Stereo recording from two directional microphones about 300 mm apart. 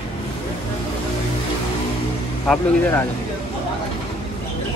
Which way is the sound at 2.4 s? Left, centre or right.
Centre.